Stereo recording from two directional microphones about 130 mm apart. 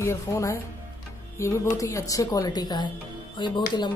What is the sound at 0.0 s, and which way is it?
A woman's voice, 20° left (ahead or behind).